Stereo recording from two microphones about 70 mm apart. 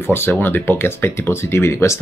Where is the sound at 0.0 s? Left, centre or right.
Left.